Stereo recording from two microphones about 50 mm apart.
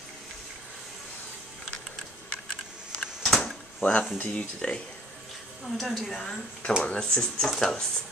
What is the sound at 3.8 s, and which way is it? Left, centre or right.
Speech, left.